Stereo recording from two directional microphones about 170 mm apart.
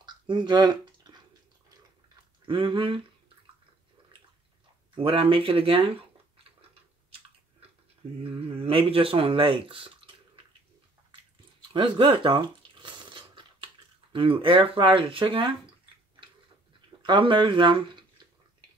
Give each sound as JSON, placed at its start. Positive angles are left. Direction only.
{"t": 0.0, "sound": "a sound", "side_deg": -25}
{"t": 2.4, "sound": "speech", "side_deg": -30}
{"t": 4.9, "sound": "a sound", "side_deg": -35}
{"t": 8.2, "sound": "speech", "side_deg": -35}
{"t": 11.7, "sound": "crunch", "side_deg": -30}
{"t": 14.1, "sound": "speech", "side_deg": -35}